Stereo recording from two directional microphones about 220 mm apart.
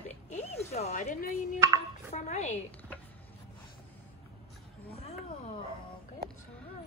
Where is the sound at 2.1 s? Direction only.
30° left (ahead or behind).